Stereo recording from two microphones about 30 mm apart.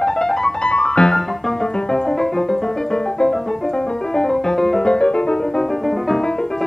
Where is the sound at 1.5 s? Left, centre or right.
Left.